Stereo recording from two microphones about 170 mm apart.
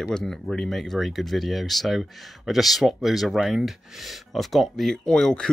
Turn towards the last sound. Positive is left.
turn(degrees=5)  # may be behind; listen again after turning